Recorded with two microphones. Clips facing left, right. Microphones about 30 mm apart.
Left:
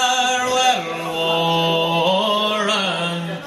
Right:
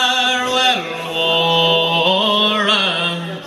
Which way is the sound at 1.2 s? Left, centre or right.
Right.